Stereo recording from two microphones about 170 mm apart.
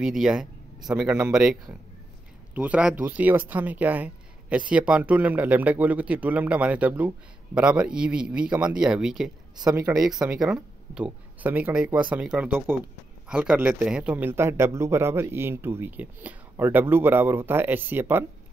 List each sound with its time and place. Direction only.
0.0 s speech: 5° right (ahead or behind)
9.6 s speech: 20° right (ahead or behind)
10.0 s speech: 5° right (ahead or behind)